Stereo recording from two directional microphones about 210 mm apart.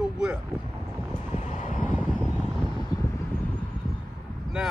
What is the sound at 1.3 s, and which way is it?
Vehicle, 35° left (ahead or behind).